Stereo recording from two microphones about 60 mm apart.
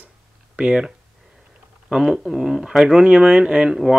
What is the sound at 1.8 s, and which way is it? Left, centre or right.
Speech, centre.